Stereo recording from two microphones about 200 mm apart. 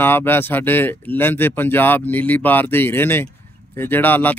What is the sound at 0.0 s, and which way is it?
Speech, 10° left (ahead or behind).